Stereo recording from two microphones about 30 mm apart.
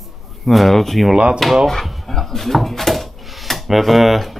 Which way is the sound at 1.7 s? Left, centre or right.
Centre.